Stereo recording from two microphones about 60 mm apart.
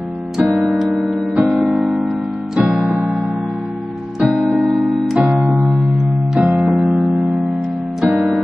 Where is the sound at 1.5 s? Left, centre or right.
Centre.